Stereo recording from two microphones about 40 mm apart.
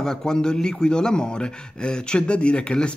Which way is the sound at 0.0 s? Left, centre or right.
Centre.